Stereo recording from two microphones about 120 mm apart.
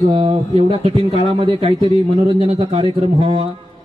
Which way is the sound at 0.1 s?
50° right (ahead or behind).